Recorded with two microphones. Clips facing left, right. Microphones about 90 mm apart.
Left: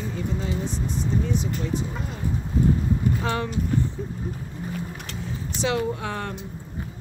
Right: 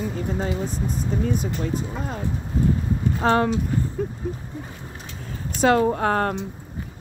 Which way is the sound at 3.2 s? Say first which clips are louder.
Right 7 dB; 45° right (ahead or behind).